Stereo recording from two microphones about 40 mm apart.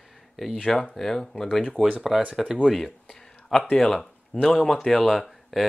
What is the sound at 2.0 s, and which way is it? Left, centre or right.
Speech, centre.